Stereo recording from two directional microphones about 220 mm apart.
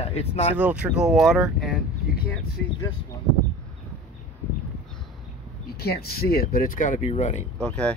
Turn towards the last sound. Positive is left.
turn(degrees=5)  # may be behind; listen again after turning